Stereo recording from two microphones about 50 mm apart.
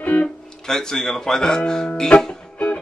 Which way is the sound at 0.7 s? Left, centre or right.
Centre.